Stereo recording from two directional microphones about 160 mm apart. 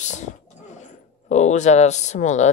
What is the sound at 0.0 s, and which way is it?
Speech, 50° left (ahead or behind).